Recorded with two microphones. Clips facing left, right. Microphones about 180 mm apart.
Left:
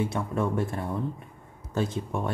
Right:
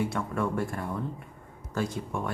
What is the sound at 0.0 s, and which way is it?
Speech, 20° left (ahead or behind).